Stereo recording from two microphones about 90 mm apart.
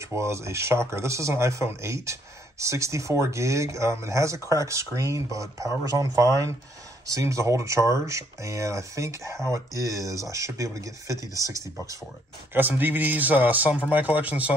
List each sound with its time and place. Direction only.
0.0 s speech: 30° right (ahead or behind)
12.5 s speech: 20° right (ahead or behind)